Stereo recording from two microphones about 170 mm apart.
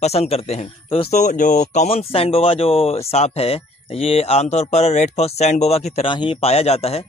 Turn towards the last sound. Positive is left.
turn(degrees=35)  # may be behind; listen again after turning